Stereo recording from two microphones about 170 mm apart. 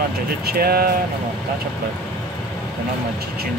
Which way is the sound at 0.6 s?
65° right (ahead or behind).